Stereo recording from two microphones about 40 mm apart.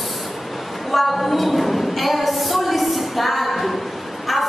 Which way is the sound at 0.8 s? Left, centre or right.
Centre.